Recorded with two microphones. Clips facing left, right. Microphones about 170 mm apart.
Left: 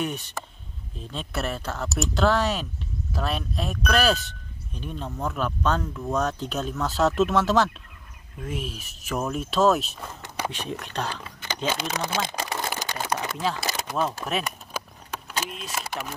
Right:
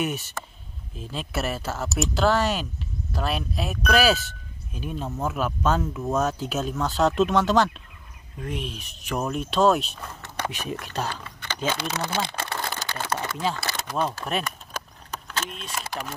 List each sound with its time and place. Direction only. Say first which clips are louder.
0.0 s speech: right 1 dB; 5° right (ahead or behind)
10.5 s speech: right 1 dB; 5° right (ahead or behind)
11.2 s a sound: even; 15° left (ahead or behind)
13.8 s speech: even; centre (ahead or behind)
14.4 s keys jangling: left 1 dB; 10° left (ahead or behind)